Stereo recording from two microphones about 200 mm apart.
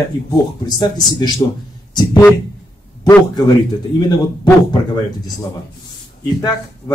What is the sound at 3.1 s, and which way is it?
Speech, 20° left (ahead or behind).